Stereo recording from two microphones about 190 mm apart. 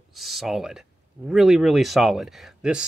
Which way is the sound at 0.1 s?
Centre (ahead or behind).